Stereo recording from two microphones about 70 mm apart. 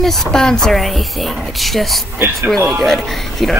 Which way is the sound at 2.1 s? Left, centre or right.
Right.